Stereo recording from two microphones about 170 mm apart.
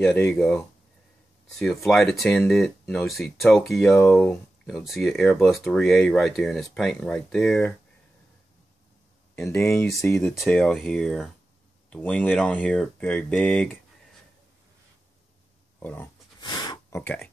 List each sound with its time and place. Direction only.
0.0 s speech: 10° left (ahead or behind)
1.9 s speech: centre (ahead or behind)
9.3 s speech: 5° left (ahead or behind)
9.6 s speech: 15° left (ahead or behind)
10.1 s speech: centre (ahead or behind)
15.8 s speech: 10° left (ahead or behind)
16.3 s a sound: 25° left (ahead or behind)